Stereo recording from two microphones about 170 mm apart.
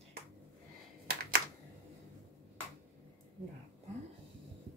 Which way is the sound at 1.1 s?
65° right (ahead or behind).